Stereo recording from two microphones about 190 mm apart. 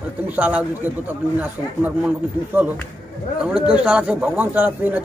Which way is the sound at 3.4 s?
5° right (ahead or behind).